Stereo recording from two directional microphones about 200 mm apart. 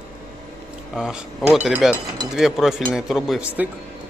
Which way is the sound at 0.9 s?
5° right (ahead or behind).